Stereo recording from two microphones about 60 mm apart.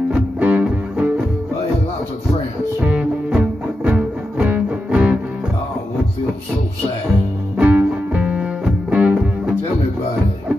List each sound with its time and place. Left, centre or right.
0.1 s music: right
2.8 s music: centre
7.5 s music: right